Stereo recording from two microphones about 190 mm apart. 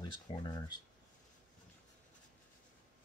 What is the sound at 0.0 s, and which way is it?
Speech, 25° left (ahead or behind).